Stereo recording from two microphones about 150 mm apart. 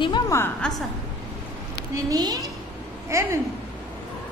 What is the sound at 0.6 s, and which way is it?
Speech, 5° left (ahead or behind).